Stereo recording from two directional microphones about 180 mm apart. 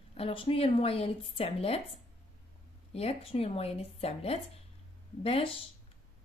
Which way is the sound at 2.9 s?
35° left (ahead or behind).